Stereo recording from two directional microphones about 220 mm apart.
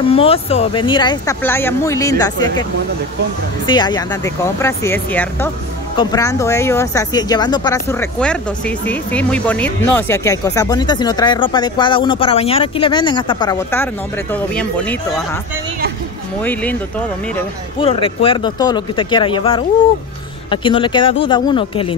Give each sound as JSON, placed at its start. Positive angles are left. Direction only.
{"t": 0.1, "sound": "speech", "side_deg": 25}
{"t": 3.6, "sound": "speech", "side_deg": 20}
{"t": 17.7, "sound": "speech", "side_deg": 25}